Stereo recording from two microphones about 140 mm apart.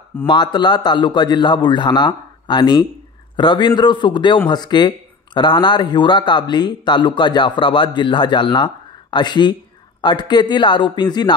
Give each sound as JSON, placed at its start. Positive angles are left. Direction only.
{"t": 0.3, "sound": "a man's voice", "side_deg": 30}